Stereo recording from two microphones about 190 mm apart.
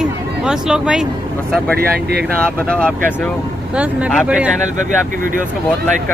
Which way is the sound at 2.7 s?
5° left (ahead or behind).